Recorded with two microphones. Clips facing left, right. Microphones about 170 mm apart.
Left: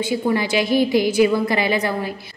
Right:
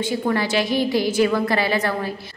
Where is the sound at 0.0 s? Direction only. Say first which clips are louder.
Left 2 dB; 10° left (ahead or behind).